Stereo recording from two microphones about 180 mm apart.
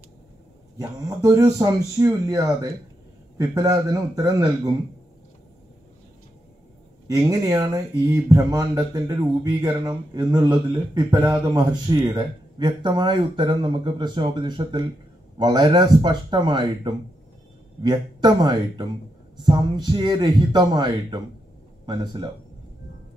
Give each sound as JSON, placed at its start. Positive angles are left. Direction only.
{"t": 0.7, "sound": "speech", "side_deg": -20}
{"t": 7.1, "sound": "speech", "side_deg": -20}